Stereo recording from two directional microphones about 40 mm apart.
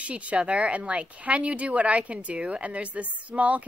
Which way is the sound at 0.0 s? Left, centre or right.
Right.